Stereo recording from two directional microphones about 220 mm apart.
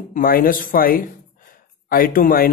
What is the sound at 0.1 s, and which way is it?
Speech, 40° left (ahead or behind).